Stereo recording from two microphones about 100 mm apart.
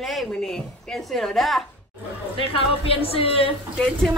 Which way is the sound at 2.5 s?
70° left (ahead or behind).